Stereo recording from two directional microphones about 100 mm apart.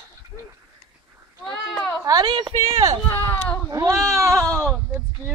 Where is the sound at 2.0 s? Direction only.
40° right (ahead or behind).